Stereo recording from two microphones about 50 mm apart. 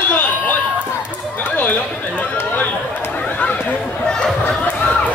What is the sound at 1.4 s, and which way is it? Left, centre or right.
Chatter, left.